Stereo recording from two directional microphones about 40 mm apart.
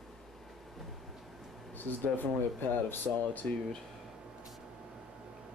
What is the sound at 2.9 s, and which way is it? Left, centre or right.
Speech, left.